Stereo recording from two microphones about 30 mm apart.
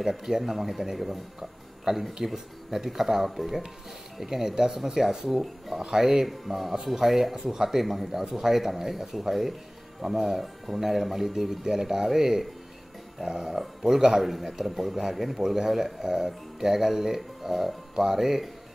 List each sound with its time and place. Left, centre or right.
0.0 s speech: centre
6.2 s speech: centre